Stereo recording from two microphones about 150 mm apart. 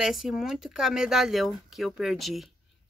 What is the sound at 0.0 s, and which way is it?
Speech, centre (ahead or behind).